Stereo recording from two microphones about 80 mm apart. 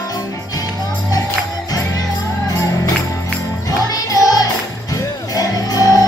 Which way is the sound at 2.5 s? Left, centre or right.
Left.